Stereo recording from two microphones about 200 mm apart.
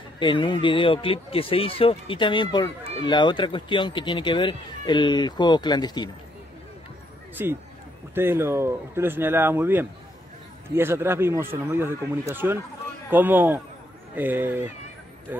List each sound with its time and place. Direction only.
0.2 s speech: 25° left (ahead or behind)
7.4 s speech: 10° right (ahead or behind)